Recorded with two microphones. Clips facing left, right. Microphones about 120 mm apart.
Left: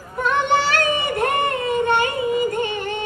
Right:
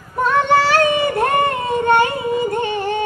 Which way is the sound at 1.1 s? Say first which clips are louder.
Right 3 dB; 30° right (ahead or behind).